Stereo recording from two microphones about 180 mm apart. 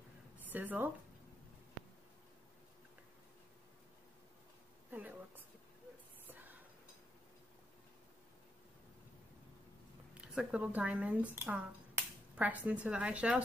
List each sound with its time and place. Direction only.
0.4 s a woman's voice: 10° right (ahead or behind)
4.9 s a woman's voice: 10° right (ahead or behind)
6.2 s whispering: 10° right (ahead or behind)
10.1 s speech: 5° right (ahead or behind)